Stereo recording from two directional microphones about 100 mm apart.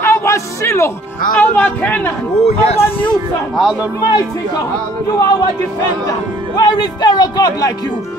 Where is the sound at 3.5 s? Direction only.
5° right (ahead or behind).